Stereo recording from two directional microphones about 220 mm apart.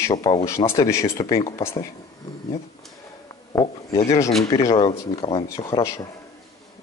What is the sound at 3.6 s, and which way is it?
Speech, 15° left (ahead or behind).